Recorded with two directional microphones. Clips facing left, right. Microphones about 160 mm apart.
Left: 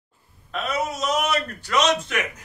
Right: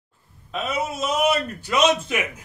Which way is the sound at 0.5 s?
5° right (ahead or behind).